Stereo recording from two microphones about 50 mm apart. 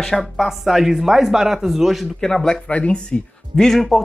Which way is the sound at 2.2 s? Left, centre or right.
Centre.